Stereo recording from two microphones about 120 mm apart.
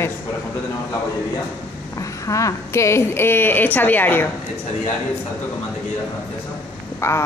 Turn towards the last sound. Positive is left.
turn(degrees=20)  # may be behind; listen again after turning